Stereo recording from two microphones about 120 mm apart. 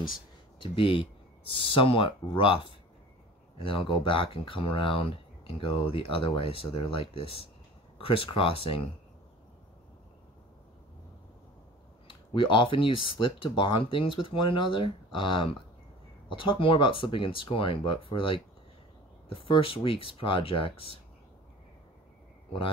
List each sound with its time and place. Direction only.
0.6 s speech: 45° left (ahead or behind)
12.1 s speech: 45° left (ahead or behind)